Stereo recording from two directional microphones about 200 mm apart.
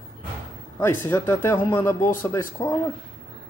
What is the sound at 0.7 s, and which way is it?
Speech, 10° left (ahead or behind).